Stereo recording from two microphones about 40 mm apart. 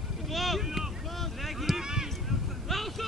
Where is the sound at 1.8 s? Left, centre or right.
Centre.